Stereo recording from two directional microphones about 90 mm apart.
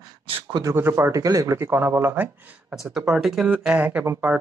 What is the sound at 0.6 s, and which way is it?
Speech, 30° right (ahead or behind).